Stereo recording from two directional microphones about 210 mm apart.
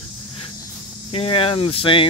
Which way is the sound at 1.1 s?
25° left (ahead or behind).